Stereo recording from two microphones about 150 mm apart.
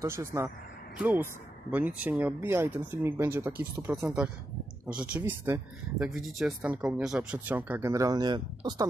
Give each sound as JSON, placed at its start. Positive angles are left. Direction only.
{"t": 0.0, "sound": "speech", "side_deg": -20}
{"t": 5.9, "sound": "speech", "side_deg": 0}